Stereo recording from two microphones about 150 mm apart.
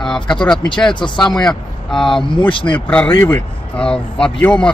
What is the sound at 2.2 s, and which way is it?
Speech, 35° left (ahead or behind).